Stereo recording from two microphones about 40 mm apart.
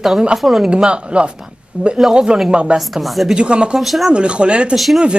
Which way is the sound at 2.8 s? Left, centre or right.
Centre.